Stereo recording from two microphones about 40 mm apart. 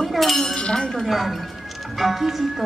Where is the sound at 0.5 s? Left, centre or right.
Left.